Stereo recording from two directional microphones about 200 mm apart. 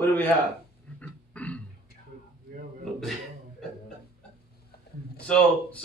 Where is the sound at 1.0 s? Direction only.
5° left (ahead or behind).